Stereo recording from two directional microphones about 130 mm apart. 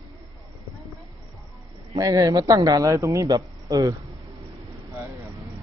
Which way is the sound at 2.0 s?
25° right (ahead or behind).